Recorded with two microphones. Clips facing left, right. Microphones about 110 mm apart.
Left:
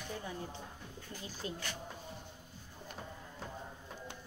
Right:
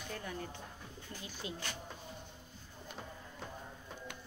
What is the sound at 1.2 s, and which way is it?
Speech, 40° left (ahead or behind).